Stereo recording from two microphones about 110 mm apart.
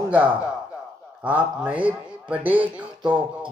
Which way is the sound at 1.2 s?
15° right (ahead or behind).